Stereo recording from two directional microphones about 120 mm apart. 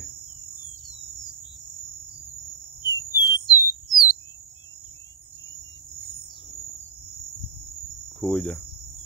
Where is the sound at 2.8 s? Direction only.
30° left (ahead or behind).